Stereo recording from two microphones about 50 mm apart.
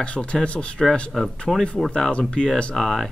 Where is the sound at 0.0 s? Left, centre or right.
Left.